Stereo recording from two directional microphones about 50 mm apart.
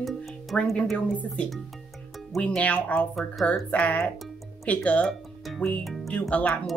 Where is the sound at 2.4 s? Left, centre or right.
Left.